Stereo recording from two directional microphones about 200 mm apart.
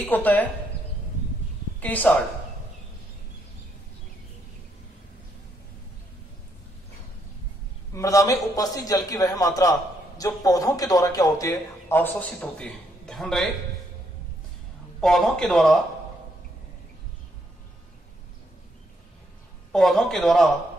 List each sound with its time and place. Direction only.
0.0 s a man's voice: 10° left (ahead or behind)
1.8 s a man's voice: 10° left (ahead or behind)
7.9 s a man's voice: 15° left (ahead or behind)
15.0 s speech: centre (ahead or behind)
19.7 s speech: centre (ahead or behind)